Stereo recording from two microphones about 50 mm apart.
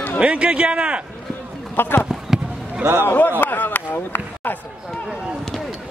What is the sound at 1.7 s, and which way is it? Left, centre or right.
A man's voice, left.